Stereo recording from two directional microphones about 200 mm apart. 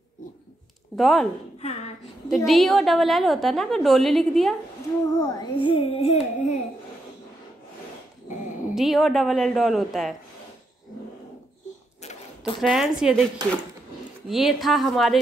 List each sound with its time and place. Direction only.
0.9 s a woman's voice: centre (ahead or behind)
1.6 s a sound: 35° left (ahead or behind)
2.3 s a woman's voice: centre (ahead or behind)
5.1 s carnatic music: 20° left (ahead or behind)
8.7 s a woman's voice: centre (ahead or behind)
12.0 s a sound: 35° left (ahead or behind)
12.5 s a woman's voice: centre (ahead or behind)
14.3 s a woman's voice: centre (ahead or behind)